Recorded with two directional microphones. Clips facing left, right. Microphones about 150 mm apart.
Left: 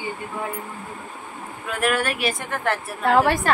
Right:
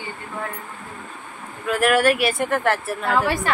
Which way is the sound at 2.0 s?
65° right (ahead or behind).